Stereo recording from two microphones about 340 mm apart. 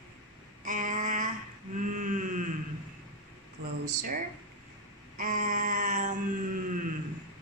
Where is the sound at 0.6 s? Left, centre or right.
Right.